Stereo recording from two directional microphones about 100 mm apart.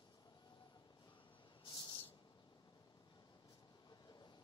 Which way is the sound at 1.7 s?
45° left (ahead or behind).